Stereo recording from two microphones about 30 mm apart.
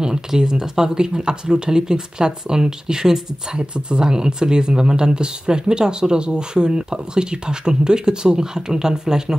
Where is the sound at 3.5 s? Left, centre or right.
Right.